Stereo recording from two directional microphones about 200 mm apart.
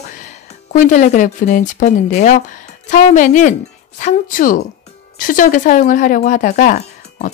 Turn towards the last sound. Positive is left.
turn(degrees=40)  # may be behind; listen again after turning